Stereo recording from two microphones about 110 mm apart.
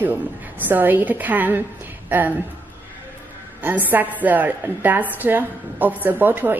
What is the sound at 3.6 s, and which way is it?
A woman's voice, 15° right (ahead or behind).